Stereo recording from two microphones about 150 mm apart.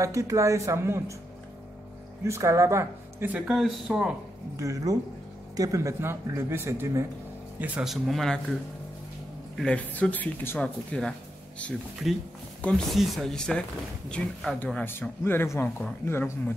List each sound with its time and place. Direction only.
0.0 s speech: 20° right (ahead or behind)
2.2 s speech: 20° right (ahead or behind)
3.3 s speech: centre (ahead or behind)
4.6 s a man's voice: 20° right (ahead or behind); by 8.4 s centre (ahead or behind)
9.6 s speech: 10° left (ahead or behind)